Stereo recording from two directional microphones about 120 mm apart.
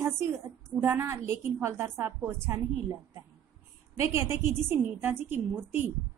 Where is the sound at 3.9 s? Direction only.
25° right (ahead or behind).